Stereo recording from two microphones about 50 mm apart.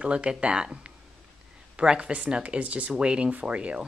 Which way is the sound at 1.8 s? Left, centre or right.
Right.